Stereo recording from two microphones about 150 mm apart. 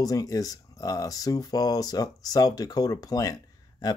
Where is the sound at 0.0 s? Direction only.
25° left (ahead or behind).